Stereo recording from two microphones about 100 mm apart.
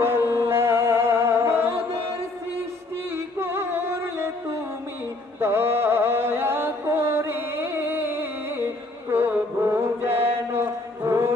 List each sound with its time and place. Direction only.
0.0 s music: 25° right (ahead or behind)
3.3 s music: 25° right (ahead or behind)
9.1 s chant: 20° right (ahead or behind)